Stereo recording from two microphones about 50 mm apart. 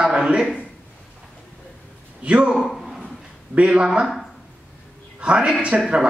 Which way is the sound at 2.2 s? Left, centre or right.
Right.